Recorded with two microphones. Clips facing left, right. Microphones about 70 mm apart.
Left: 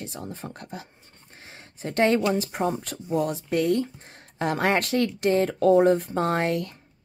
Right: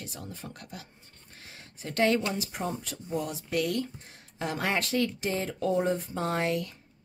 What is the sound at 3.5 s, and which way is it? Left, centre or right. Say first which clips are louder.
Speech: left 5 dB; left.